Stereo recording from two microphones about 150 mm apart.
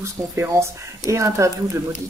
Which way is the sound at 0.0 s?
20° right (ahead or behind).